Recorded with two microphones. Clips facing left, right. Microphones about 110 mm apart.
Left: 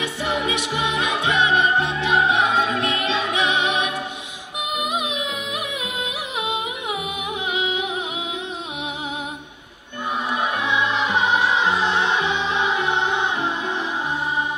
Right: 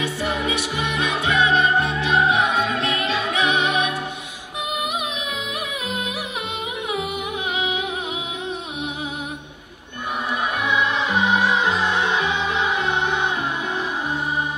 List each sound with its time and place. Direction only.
0.0 s music: 20° left (ahead or behind)
7.5 s music: 20° left (ahead or behind)
10.3 s music: 20° left (ahead or behind)